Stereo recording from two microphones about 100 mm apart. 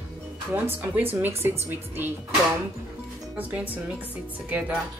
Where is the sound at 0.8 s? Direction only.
20° right (ahead or behind).